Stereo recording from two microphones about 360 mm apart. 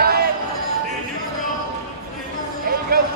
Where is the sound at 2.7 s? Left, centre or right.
Right.